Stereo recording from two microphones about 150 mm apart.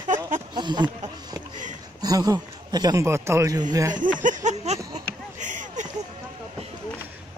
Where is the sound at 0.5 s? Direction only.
30° right (ahead or behind).